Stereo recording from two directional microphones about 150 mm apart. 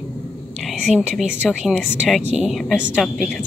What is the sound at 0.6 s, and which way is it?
A woman's voice, centre (ahead or behind).